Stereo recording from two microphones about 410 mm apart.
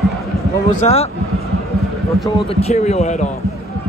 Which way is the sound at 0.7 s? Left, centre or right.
Centre.